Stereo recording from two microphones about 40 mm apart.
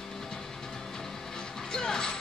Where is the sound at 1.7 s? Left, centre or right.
Centre.